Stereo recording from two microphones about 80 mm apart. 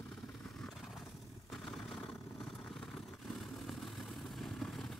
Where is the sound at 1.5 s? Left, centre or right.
Centre.